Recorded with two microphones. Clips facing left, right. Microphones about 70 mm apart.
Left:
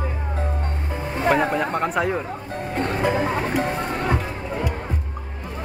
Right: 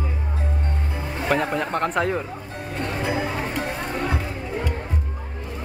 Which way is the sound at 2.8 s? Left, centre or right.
Left.